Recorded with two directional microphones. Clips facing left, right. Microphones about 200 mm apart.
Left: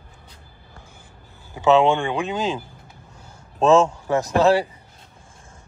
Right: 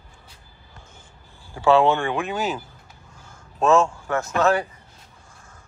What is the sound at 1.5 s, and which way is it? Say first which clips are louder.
A man's voice: left 1 dB; 20° left (ahead or behind).